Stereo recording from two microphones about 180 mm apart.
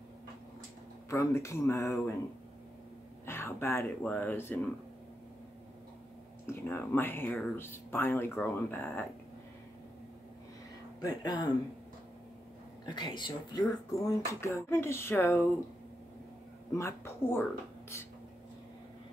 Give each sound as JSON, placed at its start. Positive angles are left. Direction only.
{"t": 1.1, "sound": "speech", "side_deg": 15}
{"t": 3.3, "sound": "speech", "side_deg": 15}
{"t": 6.4, "sound": "speech", "side_deg": 15}
{"t": 11.0, "sound": "speech", "side_deg": 20}
{"t": 12.8, "sound": "speech", "side_deg": 25}
{"t": 16.7, "sound": "speech", "side_deg": 15}